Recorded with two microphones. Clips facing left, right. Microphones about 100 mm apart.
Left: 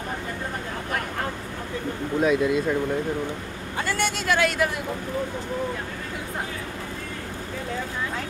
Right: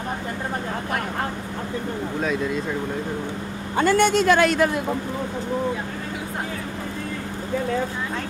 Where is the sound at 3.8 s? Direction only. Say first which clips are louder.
Right 9 dB; 50° right (ahead or behind).